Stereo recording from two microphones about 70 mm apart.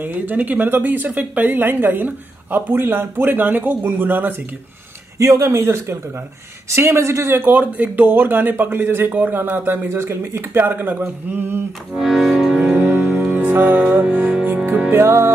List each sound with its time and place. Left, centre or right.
0.0 s speech: right
5.2 s speech: right
12.0 s music: centre
12.7 s music: right
14.9 s speech: right